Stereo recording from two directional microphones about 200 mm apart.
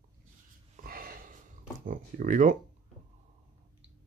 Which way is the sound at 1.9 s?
40° right (ahead or behind).